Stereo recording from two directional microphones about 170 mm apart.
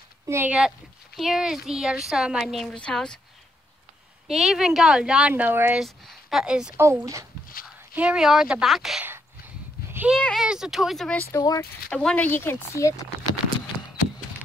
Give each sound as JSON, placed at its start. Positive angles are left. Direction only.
{"t": 0.3, "sound": "speech", "side_deg": -10}
{"t": 4.3, "sound": "speech", "side_deg": 0}
{"t": 5.9, "sound": "speech", "side_deg": 0}
{"t": 6.8, "sound": "speech", "side_deg": -15}
{"t": 9.8, "sound": "a sound", "side_deg": -10}
{"t": 10.1, "sound": "speech", "side_deg": 0}
{"t": 11.3, "sound": "speech", "side_deg": 20}
{"t": 11.9, "sound": "speech", "side_deg": 5}